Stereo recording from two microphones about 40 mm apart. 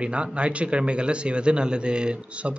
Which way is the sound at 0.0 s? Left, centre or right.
Right.